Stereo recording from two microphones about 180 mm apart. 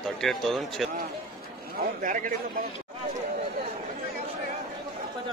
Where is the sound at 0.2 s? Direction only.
Centre (ahead or behind).